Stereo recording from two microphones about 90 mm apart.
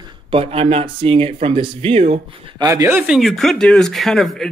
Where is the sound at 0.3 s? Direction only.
90° right.